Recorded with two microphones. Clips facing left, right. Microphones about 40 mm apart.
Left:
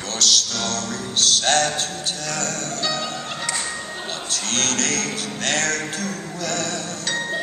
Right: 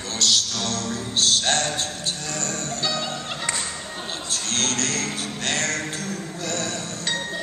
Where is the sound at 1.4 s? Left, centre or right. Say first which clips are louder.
Left 4 dB; left.